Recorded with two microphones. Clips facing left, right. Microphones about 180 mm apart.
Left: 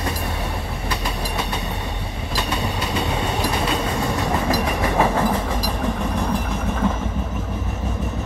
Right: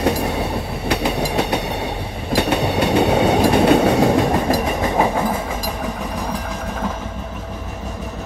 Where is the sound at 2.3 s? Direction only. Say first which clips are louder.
Right 8 dB; 65° right (ahead or behind).